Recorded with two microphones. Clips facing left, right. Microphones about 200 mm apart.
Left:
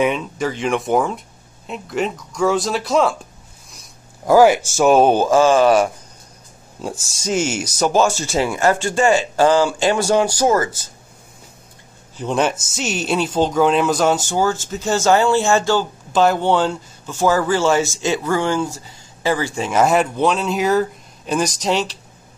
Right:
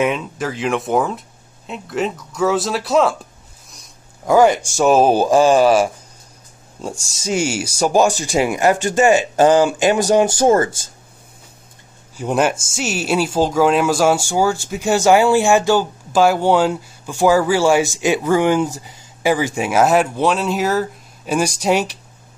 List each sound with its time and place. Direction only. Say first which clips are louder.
0.0 s speech: even; centre (ahead or behind)
4.3 s speech: left 1 dB; centre (ahead or behind)
5.2 s speech: right 1 dB; 15° right (ahead or behind); by 7.2 s centre (ahead or behind)
7.2 s speech: even; 10° right (ahead or behind); by 10.7 s 25° right (ahead or behind)
12.2 s speech: right 2 dB; 10° right (ahead or behind)
19.8 s speech: right 1 dB; 5° right (ahead or behind)